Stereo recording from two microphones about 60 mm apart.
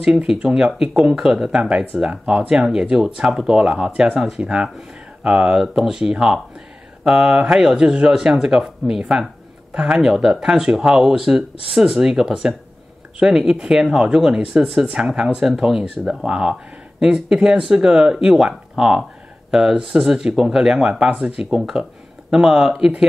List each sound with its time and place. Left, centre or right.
0.0 s speech: centre